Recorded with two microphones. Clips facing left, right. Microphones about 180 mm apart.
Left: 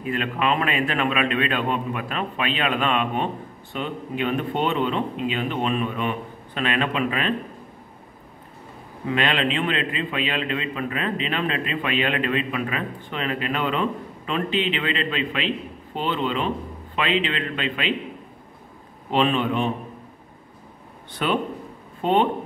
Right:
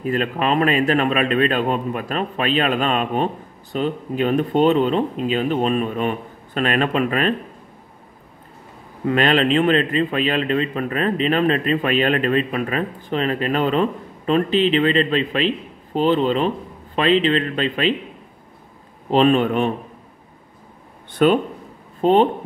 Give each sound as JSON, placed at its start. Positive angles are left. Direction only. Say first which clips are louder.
{"t": 0.0, "sound": "a man's voice", "louder": "right 4 dB", "side_deg": -40}
{"t": 9.1, "sound": "a man's voice", "louder": "right 6 dB", "side_deg": -45}
{"t": 19.0, "sound": "speech", "louder": "right 6 dB", "side_deg": -45}
{"t": 21.2, "sound": "a man's voice", "louder": "right 8 dB", "side_deg": -45}